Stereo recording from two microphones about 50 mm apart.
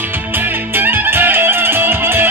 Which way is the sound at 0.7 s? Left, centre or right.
Right.